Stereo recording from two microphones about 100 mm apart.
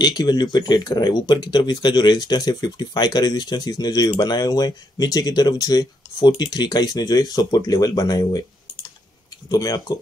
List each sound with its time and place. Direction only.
0.0 s speech: 45° left (ahead or behind)
9.5 s speech: 40° left (ahead or behind)